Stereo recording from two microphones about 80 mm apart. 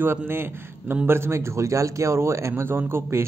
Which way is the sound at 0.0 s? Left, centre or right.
Right.